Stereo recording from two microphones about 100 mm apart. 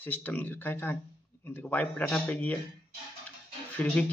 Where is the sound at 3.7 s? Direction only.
15° left (ahead or behind).